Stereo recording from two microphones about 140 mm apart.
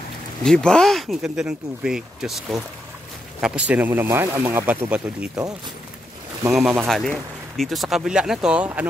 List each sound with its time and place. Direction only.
0.4 s speech: 5° left (ahead or behind)
6.5 s speech: 5° right (ahead or behind)